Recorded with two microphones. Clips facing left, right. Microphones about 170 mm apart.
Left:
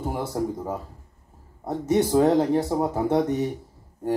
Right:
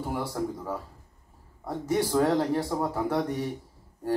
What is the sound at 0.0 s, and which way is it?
Speech, 25° left (ahead or behind).